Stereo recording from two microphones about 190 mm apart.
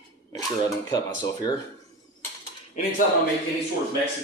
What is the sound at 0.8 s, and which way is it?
Speech, 20° left (ahead or behind).